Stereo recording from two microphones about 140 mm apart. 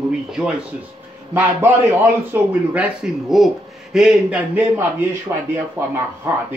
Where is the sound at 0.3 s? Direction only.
5° right (ahead or behind).